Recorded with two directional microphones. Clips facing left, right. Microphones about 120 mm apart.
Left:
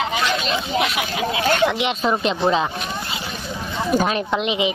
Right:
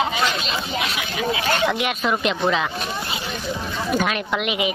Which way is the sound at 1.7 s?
25° left (ahead or behind).